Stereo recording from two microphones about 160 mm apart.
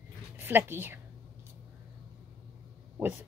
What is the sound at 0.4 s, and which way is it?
Speech, 15° right (ahead or behind).